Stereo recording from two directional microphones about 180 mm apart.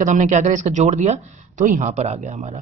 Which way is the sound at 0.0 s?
40° right (ahead or behind).